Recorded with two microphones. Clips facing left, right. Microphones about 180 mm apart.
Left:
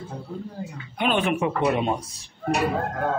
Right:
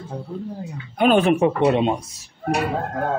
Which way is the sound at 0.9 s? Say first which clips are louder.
Right 7 dB; 45° right (ahead or behind).